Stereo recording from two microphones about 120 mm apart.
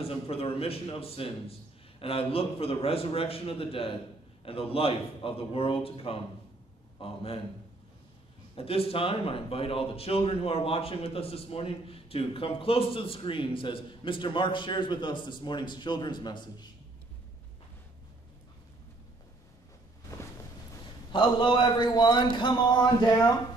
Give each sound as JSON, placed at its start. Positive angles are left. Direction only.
{"t": 0.0, "sound": "speech", "side_deg": 50}
{"t": 8.5, "sound": "speech", "side_deg": 55}
{"t": 20.1, "sound": "a sound", "side_deg": 25}
{"t": 21.1, "sound": "a man's voice", "side_deg": 40}